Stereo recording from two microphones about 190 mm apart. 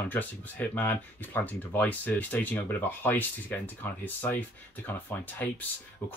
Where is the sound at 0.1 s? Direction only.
10° left (ahead or behind).